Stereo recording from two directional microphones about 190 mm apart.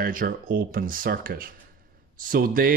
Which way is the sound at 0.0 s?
45° right (ahead or behind).